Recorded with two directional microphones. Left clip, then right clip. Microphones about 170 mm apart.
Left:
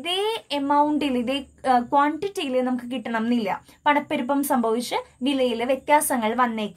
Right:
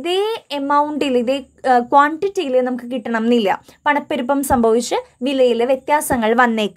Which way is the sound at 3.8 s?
35° right (ahead or behind).